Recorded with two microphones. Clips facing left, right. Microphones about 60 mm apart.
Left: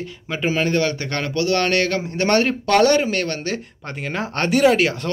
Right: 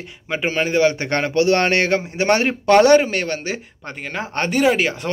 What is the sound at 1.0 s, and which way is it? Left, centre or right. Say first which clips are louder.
Speech: right 5 dB; right.